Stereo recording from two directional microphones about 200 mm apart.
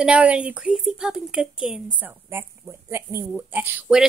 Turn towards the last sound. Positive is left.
turn(degrees=-5)  # may be behind; listen again after turning